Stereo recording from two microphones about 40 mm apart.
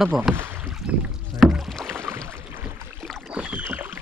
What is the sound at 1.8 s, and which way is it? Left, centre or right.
Boat, right.